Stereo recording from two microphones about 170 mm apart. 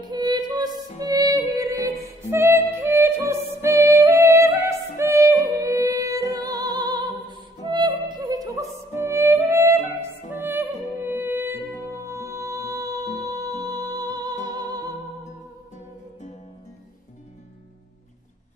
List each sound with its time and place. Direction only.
0.1 s music: 25° right (ahead or behind)